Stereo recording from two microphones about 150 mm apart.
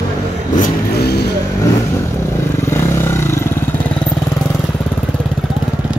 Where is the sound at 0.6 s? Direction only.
90° left.